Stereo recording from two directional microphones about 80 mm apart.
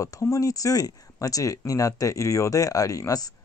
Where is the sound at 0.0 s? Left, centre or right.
Left.